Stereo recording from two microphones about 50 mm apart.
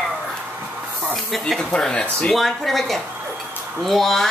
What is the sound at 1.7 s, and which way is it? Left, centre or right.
A woman's voice, centre.